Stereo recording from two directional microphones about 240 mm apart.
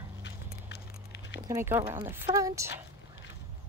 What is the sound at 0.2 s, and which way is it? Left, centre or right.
Dog, left.